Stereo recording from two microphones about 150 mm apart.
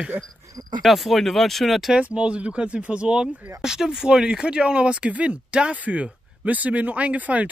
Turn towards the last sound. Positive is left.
turn(degrees=-10)  # may be behind; listen again after turning